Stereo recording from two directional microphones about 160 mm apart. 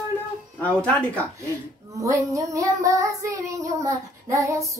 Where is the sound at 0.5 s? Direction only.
10° left (ahead or behind).